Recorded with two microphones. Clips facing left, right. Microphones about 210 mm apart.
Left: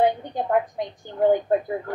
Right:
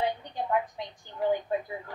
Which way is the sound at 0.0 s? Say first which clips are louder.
Left 9 dB; 55° left (ahead or behind).